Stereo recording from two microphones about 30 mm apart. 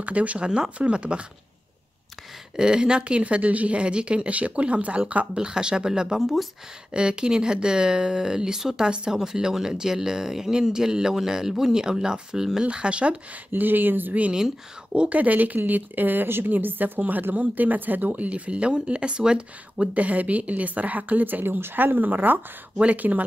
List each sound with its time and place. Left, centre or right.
0.0 s speech: right
2.5 s speech: right
3.0 s speech: right
5.3 s speech: right
6.1 s speech: centre
6.9 s speech: right
12.6 s speech: right
13.6 s a woman's voice: right
15.0 s a woman's voice: right
18.1 s speech: right
18.7 s speech: right
19.9 s speech: right
22.9 s speech: right